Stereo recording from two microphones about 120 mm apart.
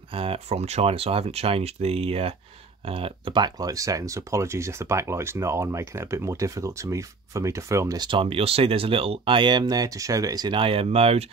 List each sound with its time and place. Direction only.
0.1 s speech: 50° right (ahead or behind); by 8.0 s 25° right (ahead or behind)
8.0 s speech: 45° right (ahead or behind)